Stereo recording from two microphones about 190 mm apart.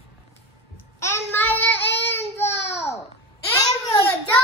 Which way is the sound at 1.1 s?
10° left (ahead or behind).